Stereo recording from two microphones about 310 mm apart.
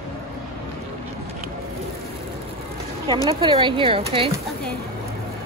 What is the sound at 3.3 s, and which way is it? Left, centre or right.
Speech, centre.